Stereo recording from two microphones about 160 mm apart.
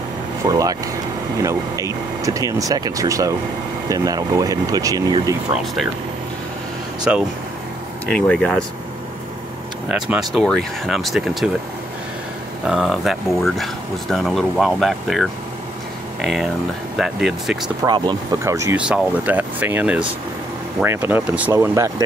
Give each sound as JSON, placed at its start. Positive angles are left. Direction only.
{"t": 0.5, "sound": "speech", "side_deg": -25}
{"t": 7.1, "sound": "speech", "side_deg": -10}
{"t": 8.1, "sound": "speech", "side_deg": 5}
{"t": 9.8, "sound": "speech", "side_deg": -10}
{"t": 12.6, "sound": "speech", "side_deg": -5}
{"t": 17.8, "sound": "speech", "side_deg": -25}
{"t": 18.8, "sound": "speech", "side_deg": -5}